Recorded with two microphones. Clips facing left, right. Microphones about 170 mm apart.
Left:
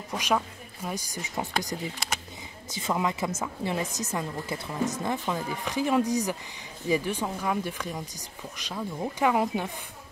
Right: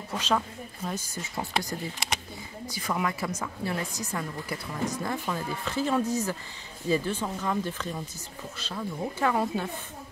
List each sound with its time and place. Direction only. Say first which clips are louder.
0.1 s speech: left 1 dB; 15° left (ahead or behind)
2.7 s a woman's voice: left 2 dB; 20° left (ahead or behind)